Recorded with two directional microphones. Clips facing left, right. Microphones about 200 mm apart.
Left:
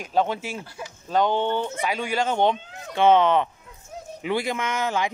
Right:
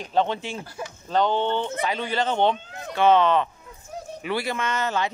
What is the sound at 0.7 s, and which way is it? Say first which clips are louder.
Speech: right 3 dB; 45° right (ahead or behind).